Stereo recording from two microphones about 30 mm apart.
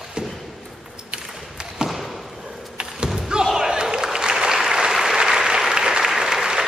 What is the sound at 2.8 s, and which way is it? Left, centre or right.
Thump, right.